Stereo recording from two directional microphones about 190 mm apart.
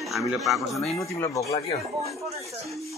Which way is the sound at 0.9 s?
15° left (ahead or behind).